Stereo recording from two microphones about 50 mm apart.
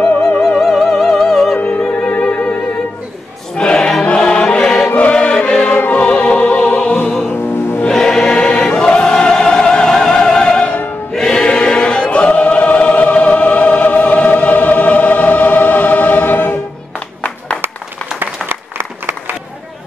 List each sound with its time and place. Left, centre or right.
0.4 s music: centre
1.7 s opera: centre
3.5 s choir: centre
4.0 s music: centre
7.9 s choir: centre
10.6 s music: left
11.1 s choir: centre; by 16.5 s left
18.5 s applause: right